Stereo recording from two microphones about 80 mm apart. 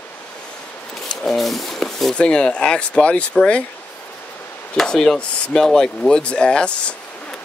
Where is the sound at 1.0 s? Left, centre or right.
Centre.